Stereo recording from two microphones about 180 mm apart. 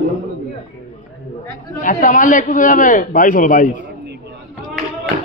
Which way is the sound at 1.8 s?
45° left (ahead or behind).